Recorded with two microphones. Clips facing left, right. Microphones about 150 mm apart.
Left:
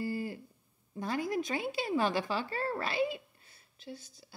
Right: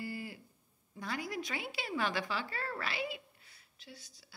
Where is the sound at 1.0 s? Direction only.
40° left (ahead or behind).